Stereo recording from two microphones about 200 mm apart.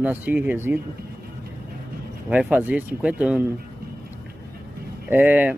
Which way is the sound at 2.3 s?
5° right (ahead or behind).